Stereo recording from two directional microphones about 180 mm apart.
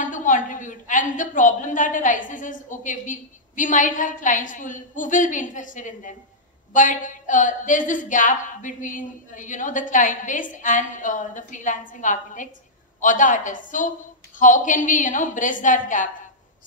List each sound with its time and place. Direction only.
0.0 s a woman's voice: 45° left (ahead or behind)